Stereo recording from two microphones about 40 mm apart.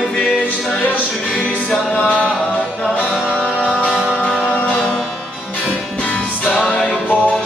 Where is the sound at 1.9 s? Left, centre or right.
Left.